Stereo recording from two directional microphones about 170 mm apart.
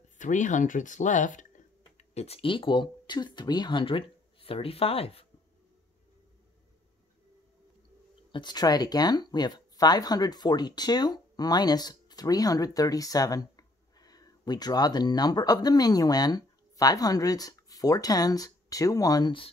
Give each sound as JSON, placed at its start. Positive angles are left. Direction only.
{"t": 0.2, "sound": "speech", "side_deg": 45}
{"t": 8.3, "sound": "speech", "side_deg": 25}